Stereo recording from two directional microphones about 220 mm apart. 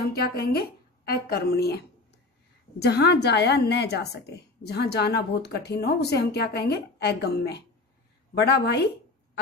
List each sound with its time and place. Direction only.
0.1 s speech: 45° left (ahead or behind)
2.8 s speech: 50° left (ahead or behind)